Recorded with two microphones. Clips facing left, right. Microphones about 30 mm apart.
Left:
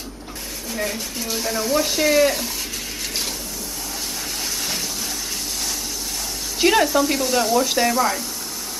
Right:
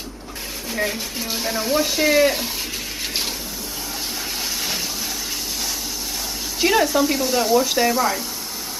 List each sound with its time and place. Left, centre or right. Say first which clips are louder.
0.7 s speech: right 2 dB; centre
6.6 s speech: left 1 dB; centre